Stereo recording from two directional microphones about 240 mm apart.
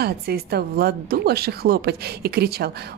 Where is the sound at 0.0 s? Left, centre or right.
Right.